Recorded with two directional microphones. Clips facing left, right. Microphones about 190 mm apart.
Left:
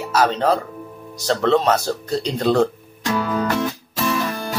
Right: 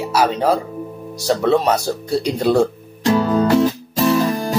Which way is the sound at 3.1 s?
35° right (ahead or behind).